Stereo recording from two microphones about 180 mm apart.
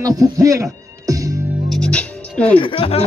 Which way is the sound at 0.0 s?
20° right (ahead or behind).